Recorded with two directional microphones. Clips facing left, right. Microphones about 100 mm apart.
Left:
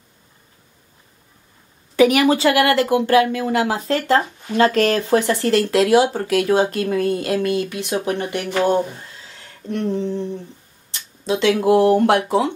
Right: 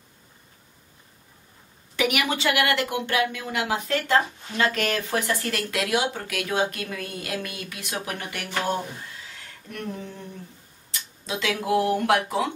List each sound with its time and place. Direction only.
2.0 s speech: 35° left (ahead or behind)
9.7 s a sound: 30° left (ahead or behind)
10.9 s speech: 30° left (ahead or behind)